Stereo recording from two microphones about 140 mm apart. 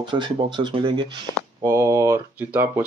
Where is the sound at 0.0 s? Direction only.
35° right (ahead or behind).